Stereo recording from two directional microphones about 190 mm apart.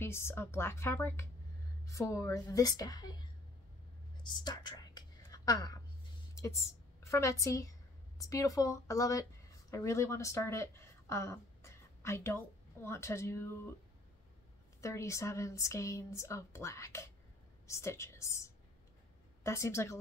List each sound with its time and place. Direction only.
0.0 s speech: 15° left (ahead or behind)
4.2 s whispering: 25° left (ahead or behind)
7.0 s a woman's voice: 15° left (ahead or behind)
14.8 s a woman's voice: 15° left (ahead or behind)